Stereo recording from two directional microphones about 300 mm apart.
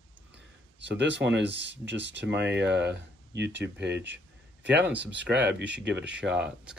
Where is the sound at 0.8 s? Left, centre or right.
Right.